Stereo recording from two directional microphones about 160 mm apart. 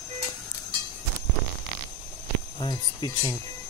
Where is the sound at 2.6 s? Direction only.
25° left (ahead or behind).